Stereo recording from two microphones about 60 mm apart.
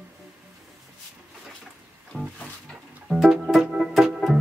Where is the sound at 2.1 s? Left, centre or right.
Centre.